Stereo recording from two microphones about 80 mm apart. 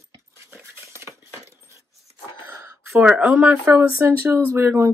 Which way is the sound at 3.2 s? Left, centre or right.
Right.